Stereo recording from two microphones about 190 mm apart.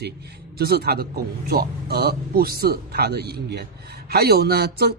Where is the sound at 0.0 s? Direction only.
60° right (ahead or behind).